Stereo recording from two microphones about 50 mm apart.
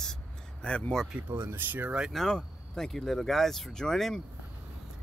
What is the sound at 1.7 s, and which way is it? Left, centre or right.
Speech, right.